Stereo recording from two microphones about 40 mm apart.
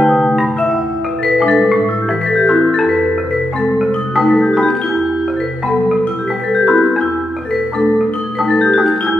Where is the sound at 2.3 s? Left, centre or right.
Centre.